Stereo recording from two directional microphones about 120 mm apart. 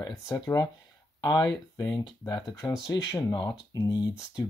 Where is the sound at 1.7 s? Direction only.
30° left (ahead or behind).